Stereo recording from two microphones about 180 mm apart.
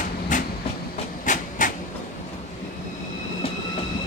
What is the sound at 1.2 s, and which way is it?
Train, 45° left (ahead or behind).